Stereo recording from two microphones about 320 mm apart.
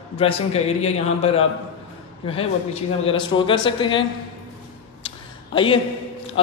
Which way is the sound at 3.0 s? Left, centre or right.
Centre.